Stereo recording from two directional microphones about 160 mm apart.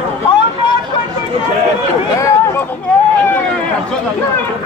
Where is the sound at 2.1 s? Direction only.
20° left (ahead or behind).